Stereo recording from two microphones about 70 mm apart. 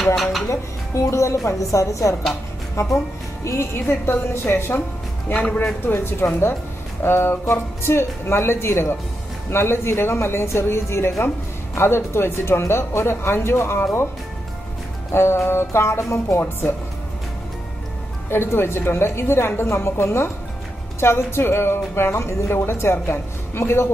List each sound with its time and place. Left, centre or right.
0.0 s speech: centre
0.5 s a woman's voice: left
5.3 s a man's voice: left
5.9 s a woman's voice: left
15.1 s a woman's voice: left
18.3 s a woman's voice: left